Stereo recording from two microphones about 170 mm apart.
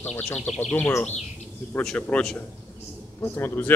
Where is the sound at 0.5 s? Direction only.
5° left (ahead or behind).